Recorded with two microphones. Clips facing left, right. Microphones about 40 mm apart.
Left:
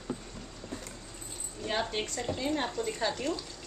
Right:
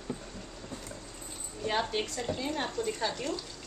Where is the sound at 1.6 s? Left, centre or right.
Centre.